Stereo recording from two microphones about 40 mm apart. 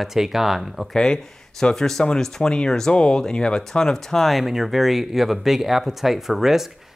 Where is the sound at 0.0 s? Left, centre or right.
Centre.